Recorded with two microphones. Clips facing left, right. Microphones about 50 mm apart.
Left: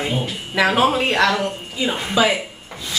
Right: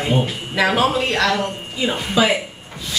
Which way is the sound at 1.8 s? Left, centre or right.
Centre.